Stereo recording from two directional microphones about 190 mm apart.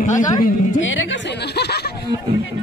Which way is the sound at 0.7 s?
80° left.